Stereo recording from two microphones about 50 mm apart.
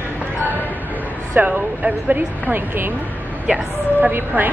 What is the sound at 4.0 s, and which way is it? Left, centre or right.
Speech, right.